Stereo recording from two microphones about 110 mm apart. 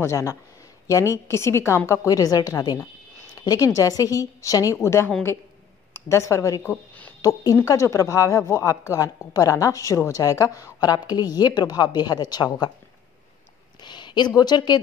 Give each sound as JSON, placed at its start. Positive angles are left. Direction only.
{"t": 0.0, "sound": "a woman's voice", "side_deg": 25}
{"t": 13.8, "sound": "speech", "side_deg": 45}